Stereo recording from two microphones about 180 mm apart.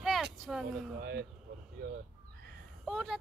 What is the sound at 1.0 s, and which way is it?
Speech, 65° right (ahead or behind).